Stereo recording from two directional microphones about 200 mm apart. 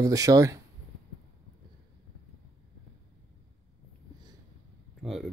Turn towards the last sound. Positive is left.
turn(degrees=0)  # may be behind; listen again after turning